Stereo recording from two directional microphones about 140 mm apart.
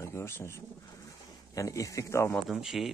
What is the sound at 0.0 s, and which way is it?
Speech, 20° left (ahead or behind).